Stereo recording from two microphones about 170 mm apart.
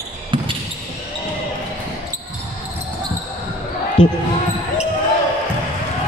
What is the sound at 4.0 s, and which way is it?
Speech, 30° left (ahead or behind).